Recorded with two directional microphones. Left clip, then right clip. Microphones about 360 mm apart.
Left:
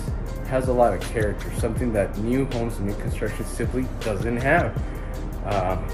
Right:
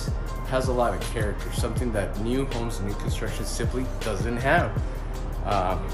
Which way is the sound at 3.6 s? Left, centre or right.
Centre.